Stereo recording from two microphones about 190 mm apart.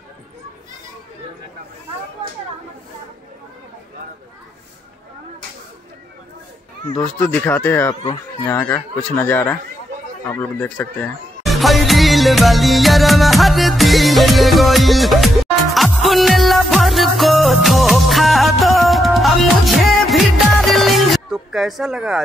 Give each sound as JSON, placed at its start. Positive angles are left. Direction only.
{"t": 7.2, "sound": "speech", "side_deg": 5}
{"t": 7.9, "sound": "speech", "side_deg": 25}
{"t": 8.5, "sound": "speech", "side_deg": 10}
{"t": 10.2, "sound": "music", "side_deg": 10}